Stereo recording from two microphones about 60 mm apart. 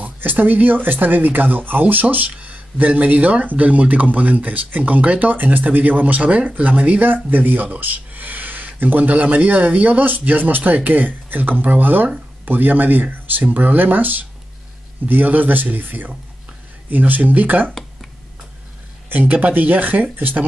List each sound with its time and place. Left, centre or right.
0.0 s speech: right
19.0 s speech: right